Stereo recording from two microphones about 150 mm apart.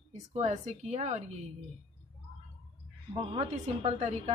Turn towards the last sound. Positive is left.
turn(degrees=-45)  # may be behind; listen again after turning